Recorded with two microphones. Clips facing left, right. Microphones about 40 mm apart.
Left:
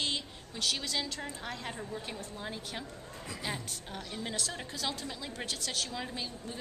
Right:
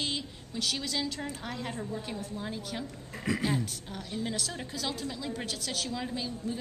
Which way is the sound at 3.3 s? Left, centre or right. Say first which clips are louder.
Right 14 dB; right.